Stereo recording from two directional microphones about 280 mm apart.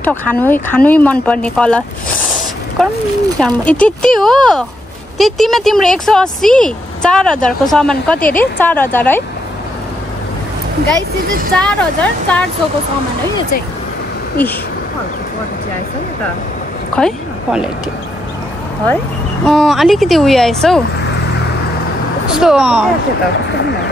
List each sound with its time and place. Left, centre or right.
0.0 s speech: centre
2.8 s speech: centre
11.5 s speech: centre
14.4 s speech: centre
16.9 s a woman's voice: centre
19.4 s speech: centre
22.4 s speech: centre
23.5 s speech: left